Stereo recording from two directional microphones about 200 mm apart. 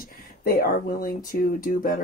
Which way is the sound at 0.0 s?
45° left (ahead or behind).